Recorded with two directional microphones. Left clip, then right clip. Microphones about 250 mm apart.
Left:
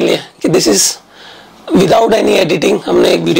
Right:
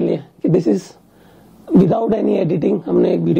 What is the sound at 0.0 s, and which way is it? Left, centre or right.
Speech, centre.